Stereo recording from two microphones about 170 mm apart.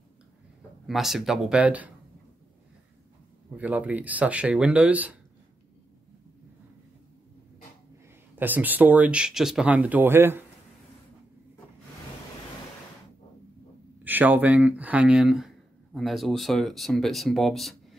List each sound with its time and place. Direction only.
0.8 s speech: centre (ahead or behind)
3.5 s speech: 10° right (ahead or behind)
8.4 s speech: 10° right (ahead or behind)
14.0 s speech: 10° right (ahead or behind)